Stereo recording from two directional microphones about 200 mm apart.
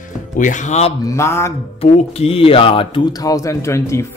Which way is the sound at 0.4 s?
35° left (ahead or behind).